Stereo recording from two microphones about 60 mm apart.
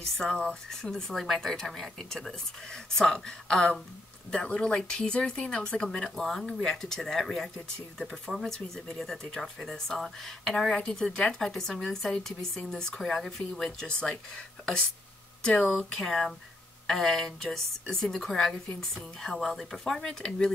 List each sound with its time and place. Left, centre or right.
0.2 s speech: centre
15.9 s speech: centre
18.3 s a woman's voice: centre
19.2 s speech: centre